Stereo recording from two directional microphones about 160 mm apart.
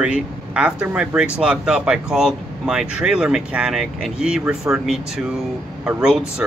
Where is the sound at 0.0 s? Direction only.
5° right (ahead or behind).